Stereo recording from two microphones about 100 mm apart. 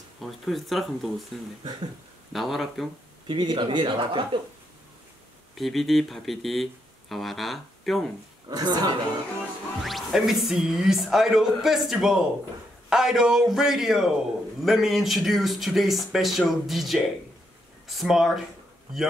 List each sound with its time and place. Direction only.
0.2 s speech: centre (ahead or behind)
2.3 s speech: centre (ahead or behind)
3.3 s speech: 50° right (ahead or behind)
5.6 s speech: centre (ahead or behind)
8.5 s speech: 40° right (ahead or behind)
9.8 s speech: centre (ahead or behind)